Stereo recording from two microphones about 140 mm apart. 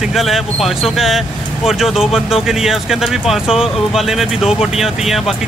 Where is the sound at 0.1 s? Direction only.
Centre (ahead or behind).